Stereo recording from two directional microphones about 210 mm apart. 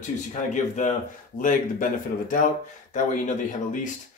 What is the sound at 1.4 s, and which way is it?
Speech, 40° left (ahead or behind).